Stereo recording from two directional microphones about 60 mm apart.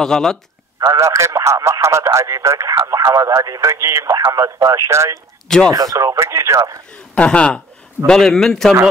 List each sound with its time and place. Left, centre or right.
0.0 s a man's voice: centre
0.7 s speech: right
2.7 s speech: right
6.1 s speech: right
7.2 s speech: centre
8.1 s a man's voice: centre